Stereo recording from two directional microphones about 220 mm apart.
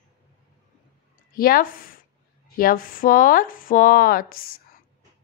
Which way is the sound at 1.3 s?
40° left (ahead or behind).